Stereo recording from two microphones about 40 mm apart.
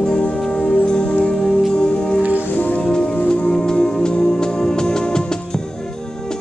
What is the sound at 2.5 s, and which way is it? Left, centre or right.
Music, left.